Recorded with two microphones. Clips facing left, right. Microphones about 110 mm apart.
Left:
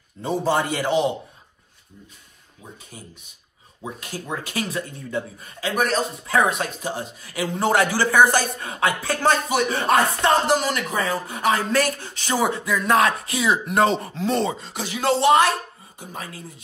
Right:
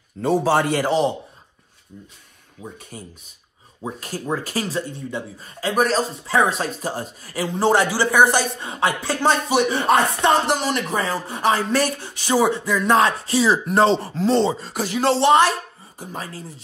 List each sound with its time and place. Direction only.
0.4 s a man's voice: 60° right (ahead or behind)
0.8 s a man's voice: 35° right (ahead or behind)
2.9 s a man's voice: 45° right (ahead or behind)
11.7 s speech: 15° right (ahead or behind)
14.6 s a man's voice: 45° right (ahead or behind)